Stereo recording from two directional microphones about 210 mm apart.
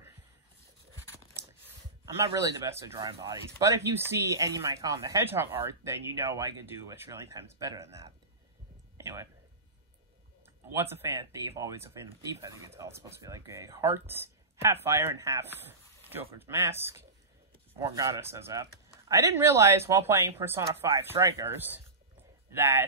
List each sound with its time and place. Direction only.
2.3 s speech: 15° right (ahead or behind)
8.9 s a sound: 15° right (ahead or behind)
10.7 s speech: 10° right (ahead or behind)